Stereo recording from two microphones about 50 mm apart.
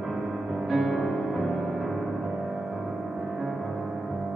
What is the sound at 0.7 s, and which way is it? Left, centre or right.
Music, centre.